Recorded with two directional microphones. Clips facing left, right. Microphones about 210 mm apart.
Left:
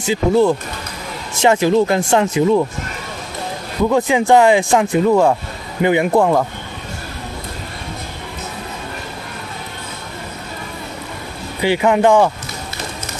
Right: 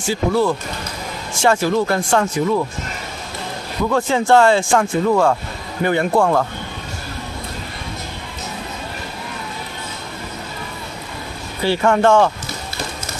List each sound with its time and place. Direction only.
0.0 s speech: 20° left (ahead or behind)
4.3 s speech: 15° left (ahead or behind)
11.6 s speech: 15° left (ahead or behind)